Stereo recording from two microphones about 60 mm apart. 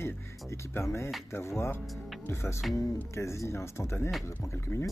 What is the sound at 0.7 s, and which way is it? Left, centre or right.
Speech, left.